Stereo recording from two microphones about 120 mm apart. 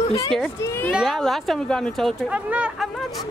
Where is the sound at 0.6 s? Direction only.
20° left (ahead or behind).